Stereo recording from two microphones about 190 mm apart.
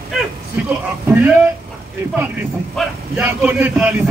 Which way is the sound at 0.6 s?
10° right (ahead or behind).